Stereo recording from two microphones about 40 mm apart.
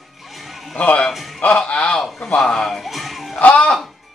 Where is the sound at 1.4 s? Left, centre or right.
Left.